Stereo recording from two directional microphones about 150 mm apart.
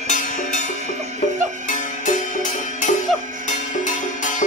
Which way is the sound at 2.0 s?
55° left (ahead or behind).